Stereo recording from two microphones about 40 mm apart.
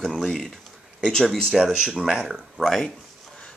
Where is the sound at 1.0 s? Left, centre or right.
Centre.